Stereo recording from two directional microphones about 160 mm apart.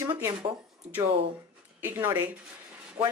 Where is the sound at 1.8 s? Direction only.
10° right (ahead or behind).